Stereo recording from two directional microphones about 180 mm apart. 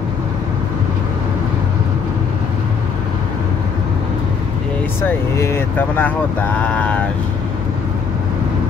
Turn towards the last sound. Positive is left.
turn(degrees=5)  # may be behind; listen again after turning